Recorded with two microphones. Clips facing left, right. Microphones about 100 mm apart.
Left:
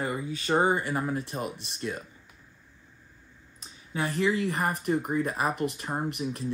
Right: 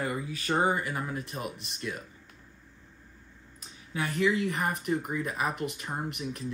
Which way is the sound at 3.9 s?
35° left (ahead or behind).